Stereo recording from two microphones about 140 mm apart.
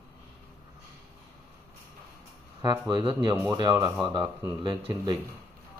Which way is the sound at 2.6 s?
30° right (ahead or behind).